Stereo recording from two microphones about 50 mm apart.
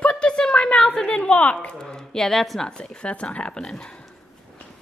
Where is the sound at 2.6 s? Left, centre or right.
Centre.